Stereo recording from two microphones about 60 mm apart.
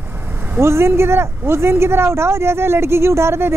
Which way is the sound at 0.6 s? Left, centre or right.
Right.